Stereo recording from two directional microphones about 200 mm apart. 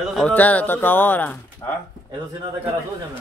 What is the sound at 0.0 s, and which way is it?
A woman's voice, centre (ahead or behind).